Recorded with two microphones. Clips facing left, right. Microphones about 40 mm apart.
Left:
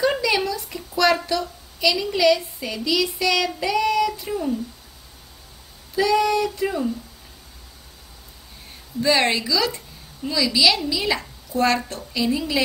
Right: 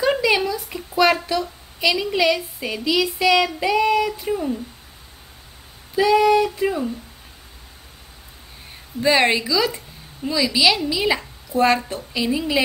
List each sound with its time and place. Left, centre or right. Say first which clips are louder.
0.0 s a sound: right 2 dB; centre
1.8 s a woman's voice: right 1 dB; centre
5.9 s a woman's voice: right 4 dB; centre
9.0 s a woman's voice: right 2 dB; centre